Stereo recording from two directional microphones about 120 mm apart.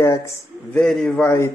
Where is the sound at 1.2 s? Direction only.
25° left (ahead or behind).